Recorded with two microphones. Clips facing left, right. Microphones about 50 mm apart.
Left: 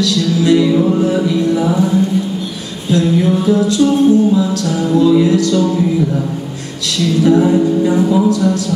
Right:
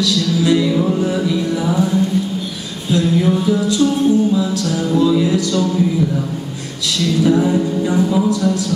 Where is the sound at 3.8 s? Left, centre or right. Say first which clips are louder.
Left 4 dB; centre.